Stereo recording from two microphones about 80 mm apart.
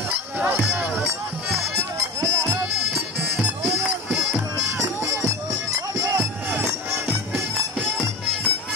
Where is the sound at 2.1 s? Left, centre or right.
Right.